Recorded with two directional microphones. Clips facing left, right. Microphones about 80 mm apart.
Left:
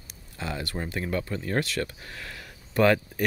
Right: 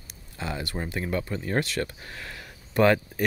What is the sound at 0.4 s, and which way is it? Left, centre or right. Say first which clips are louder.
Speech: right 1 dB; centre.